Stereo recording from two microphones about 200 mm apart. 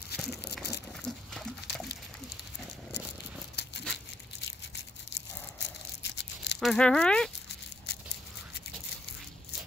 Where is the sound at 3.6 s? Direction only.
55° left (ahead or behind).